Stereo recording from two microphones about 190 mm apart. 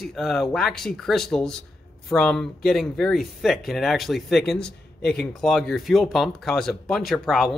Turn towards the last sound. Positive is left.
turn(degrees=0)  # may be behind; listen again after turning